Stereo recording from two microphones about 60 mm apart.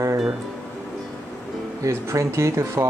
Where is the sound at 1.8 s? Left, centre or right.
Right.